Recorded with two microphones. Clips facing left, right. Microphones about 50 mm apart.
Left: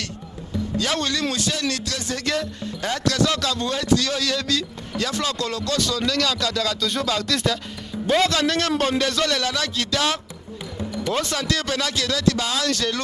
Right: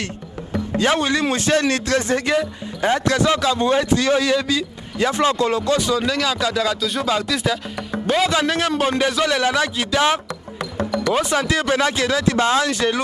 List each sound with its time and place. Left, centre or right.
0.9 s speech: centre
6.8 s speech: centre
10.8 s music: right
11.1 s speech: centre
12.6 s speech: centre